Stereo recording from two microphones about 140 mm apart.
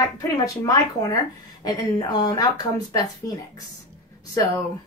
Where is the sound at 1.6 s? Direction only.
30° left (ahead or behind).